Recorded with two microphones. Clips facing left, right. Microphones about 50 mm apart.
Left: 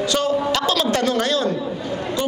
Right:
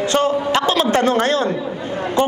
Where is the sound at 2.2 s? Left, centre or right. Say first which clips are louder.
Right 6 dB; right.